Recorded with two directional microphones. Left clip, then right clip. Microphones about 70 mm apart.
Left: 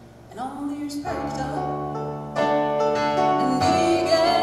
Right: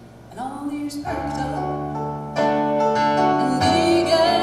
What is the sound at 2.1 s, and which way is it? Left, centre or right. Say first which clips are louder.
Music: right 1 dB; centre.